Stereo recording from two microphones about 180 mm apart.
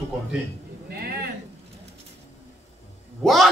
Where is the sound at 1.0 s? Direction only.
60° right (ahead or behind).